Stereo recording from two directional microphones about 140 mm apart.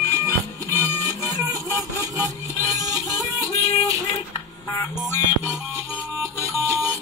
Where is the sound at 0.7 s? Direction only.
25° right (ahead or behind).